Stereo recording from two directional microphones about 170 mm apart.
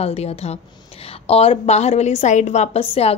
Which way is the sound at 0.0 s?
35° left (ahead or behind).